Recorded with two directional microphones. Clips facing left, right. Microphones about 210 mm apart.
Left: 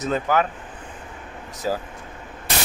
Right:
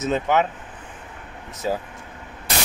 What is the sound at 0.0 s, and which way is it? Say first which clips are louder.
Speech: right 1 dB; 20° right (ahead or behind).